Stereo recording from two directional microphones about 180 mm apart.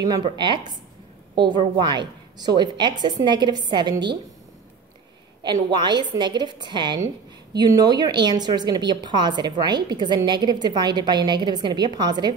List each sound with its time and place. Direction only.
0.0 s a woman's voice: 25° right (ahead or behind)
5.4 s a woman's voice: 25° right (ahead or behind)